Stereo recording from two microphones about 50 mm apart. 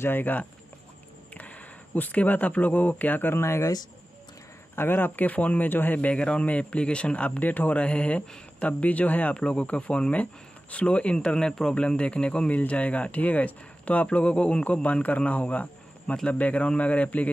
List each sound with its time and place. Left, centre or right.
0.0 s speech: left
3.3 s speech: left
4.7 s speech: left
5.9 s speech: left